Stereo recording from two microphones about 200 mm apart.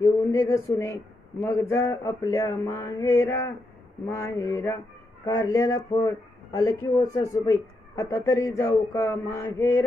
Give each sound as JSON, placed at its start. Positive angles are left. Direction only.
{"t": 0.0, "sound": "a man's voice", "side_deg": 15}